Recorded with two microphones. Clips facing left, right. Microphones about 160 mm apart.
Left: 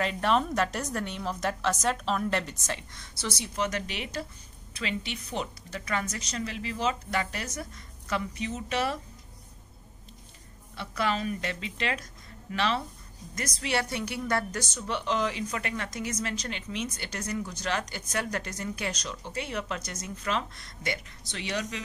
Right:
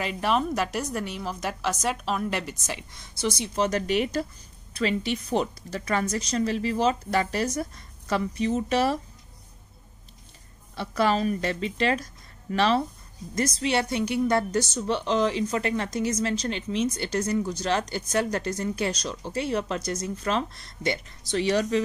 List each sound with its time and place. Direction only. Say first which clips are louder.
0.0 s a woman's voice: right 1 dB; 5° right (ahead or behind)
3.5 s a woman's voice: right 8 dB; 35° right (ahead or behind)
10.8 s a woman's voice: right 6 dB; 35° right (ahead or behind)
13.6 s a woman's voice: right 3 dB; 25° right (ahead or behind)